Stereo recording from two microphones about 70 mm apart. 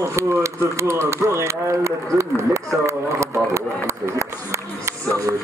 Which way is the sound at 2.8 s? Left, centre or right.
Right.